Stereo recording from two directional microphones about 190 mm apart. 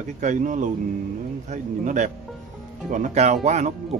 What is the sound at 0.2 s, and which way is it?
Speech, 40° right (ahead or behind).